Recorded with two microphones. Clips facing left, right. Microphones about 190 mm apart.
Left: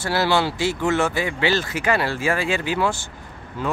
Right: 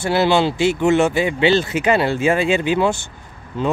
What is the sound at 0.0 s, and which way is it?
Speech, 20° right (ahead or behind).